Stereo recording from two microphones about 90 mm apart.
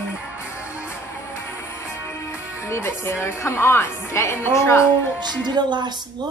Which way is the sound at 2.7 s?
30° left (ahead or behind).